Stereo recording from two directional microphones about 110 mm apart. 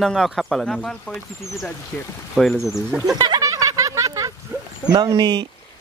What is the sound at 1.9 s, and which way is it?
Speech, 15° left (ahead or behind).